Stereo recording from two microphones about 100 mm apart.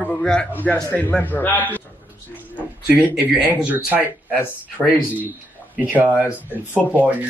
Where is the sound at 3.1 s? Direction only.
10° right (ahead or behind).